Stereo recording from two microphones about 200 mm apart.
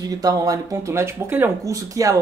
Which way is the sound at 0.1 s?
15° right (ahead or behind).